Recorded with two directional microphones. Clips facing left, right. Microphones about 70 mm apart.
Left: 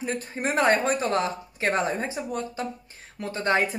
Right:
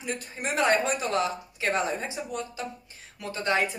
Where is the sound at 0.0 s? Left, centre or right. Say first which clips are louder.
Left 4 dB; left.